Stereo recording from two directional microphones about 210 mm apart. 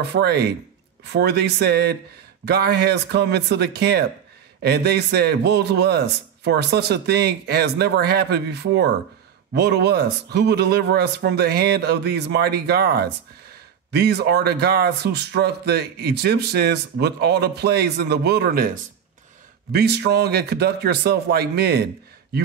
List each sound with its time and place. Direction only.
0.0 s speech: 50° right (ahead or behind)